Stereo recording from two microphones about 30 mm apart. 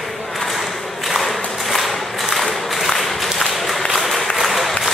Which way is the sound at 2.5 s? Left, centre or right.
Centre.